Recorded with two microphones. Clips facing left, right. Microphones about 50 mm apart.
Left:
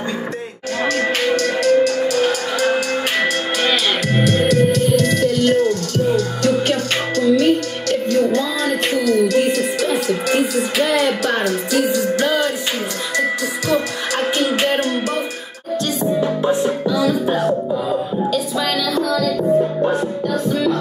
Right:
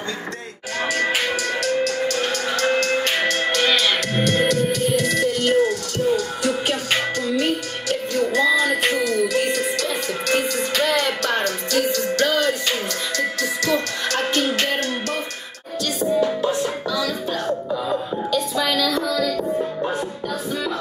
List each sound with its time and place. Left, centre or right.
0.8 s music: centre
8.6 s music: centre
13.7 s music: centre
16.1 s music: centre
18.3 s music: centre